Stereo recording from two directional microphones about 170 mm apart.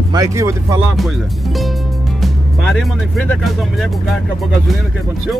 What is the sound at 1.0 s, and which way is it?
Speech, centre (ahead or behind).